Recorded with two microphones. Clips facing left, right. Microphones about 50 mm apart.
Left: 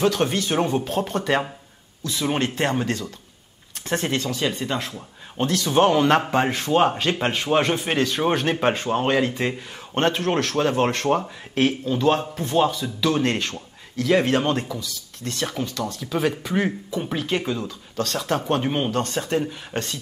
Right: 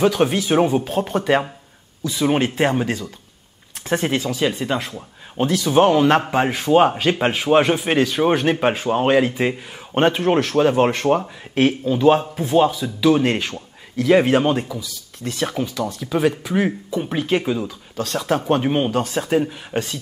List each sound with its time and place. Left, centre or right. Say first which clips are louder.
0.0 s speech: right 4 dB; centre